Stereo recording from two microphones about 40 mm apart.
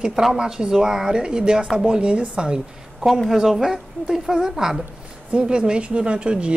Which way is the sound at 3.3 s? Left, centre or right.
Centre.